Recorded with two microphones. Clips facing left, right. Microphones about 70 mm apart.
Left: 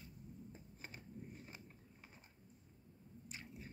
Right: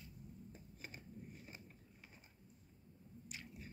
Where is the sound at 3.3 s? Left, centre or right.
Left.